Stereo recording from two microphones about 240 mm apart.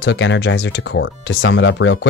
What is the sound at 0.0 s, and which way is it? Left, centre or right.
Speech, left.